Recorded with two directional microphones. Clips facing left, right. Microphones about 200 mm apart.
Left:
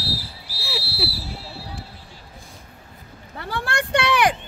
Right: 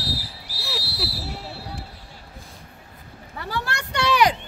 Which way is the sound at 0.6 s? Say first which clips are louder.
Left 2 dB; centre (ahead or behind).